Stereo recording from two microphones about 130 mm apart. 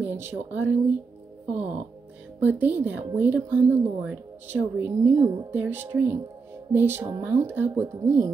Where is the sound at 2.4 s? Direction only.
15° right (ahead or behind).